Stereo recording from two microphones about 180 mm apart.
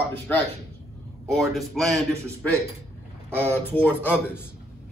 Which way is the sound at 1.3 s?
Centre (ahead or behind).